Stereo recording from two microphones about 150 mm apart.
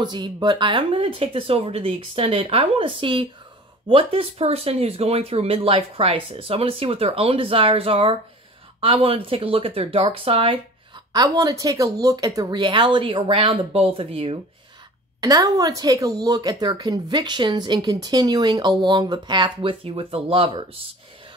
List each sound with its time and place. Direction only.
0.0 s speech: 30° right (ahead or behind)
11.1 s speech: 25° right (ahead or behind); by 14.4 s 40° right (ahead or behind)
15.1 s a woman's voice: 25° right (ahead or behind)